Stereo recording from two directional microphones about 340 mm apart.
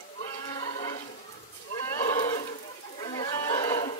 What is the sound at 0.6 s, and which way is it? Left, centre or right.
Livestock, centre.